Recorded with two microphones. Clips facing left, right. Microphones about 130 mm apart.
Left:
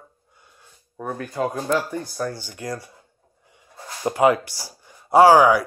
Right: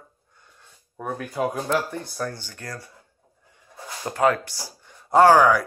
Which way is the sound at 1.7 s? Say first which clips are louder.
Left 2 dB; 5° left (ahead or behind).